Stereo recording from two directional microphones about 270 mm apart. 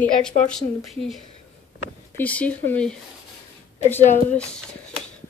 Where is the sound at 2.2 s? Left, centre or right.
Centre.